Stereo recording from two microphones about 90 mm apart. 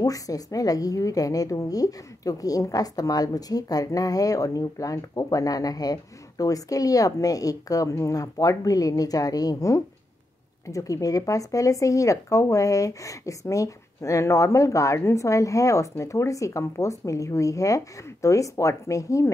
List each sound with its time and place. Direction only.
0.0 s a woman's voice: 40° left (ahead or behind)